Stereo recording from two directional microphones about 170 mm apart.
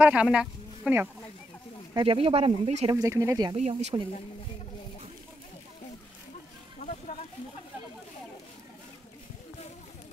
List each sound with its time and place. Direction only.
0.0 s speech: 5° right (ahead or behind)
2.0 s speech: 30° right (ahead or behind)
2.9 s speech: 20° right (ahead or behind)
3.5 s speech: 40° right (ahead or behind)
6.8 s a sound: 40° left (ahead or behind)